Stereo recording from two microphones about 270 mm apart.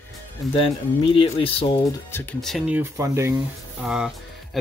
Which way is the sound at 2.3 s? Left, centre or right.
Centre.